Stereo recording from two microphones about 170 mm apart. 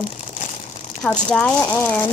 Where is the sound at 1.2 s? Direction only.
5° left (ahead or behind).